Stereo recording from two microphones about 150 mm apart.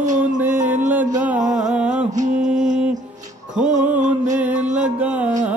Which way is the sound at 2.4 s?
55° right (ahead or behind).